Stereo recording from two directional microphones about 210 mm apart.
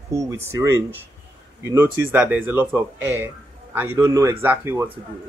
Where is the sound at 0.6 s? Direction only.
15° right (ahead or behind).